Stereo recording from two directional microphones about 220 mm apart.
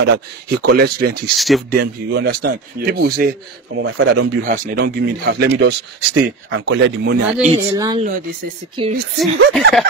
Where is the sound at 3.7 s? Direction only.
60° right (ahead or behind).